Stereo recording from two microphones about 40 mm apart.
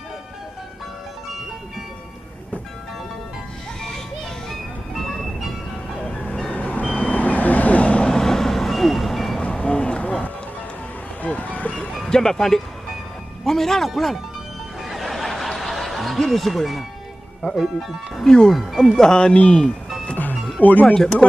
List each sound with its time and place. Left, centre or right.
5.0 s vehicle: centre
6.5 s vehicle: left
8.0 s vehicle: centre
9.4 s vehicle: left
11.2 s music: left
12.0 s a man's voice: centre
14.9 s snicker: centre
17.6 s speech: centre
18.2 s a man's voice: centre
18.5 s speech: centre
18.9 s speech: centre
20.8 s speech: centre